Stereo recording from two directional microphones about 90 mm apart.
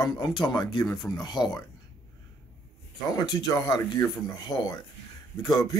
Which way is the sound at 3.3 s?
45° left (ahead or behind).